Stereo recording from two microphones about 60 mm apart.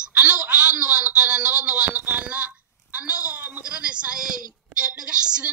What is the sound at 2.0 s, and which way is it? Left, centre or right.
A woman's voice, right.